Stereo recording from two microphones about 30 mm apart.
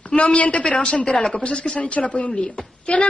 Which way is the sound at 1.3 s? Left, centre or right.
Left.